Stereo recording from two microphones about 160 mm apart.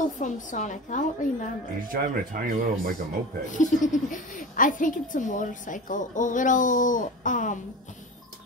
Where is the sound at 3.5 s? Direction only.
50° left (ahead or behind).